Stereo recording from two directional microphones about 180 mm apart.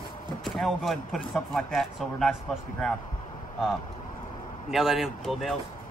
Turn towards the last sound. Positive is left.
turn(degrees=0)  # may be behind; listen again after turning